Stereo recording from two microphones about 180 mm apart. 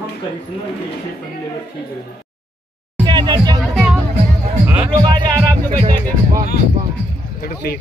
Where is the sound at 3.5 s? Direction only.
5° right (ahead or behind).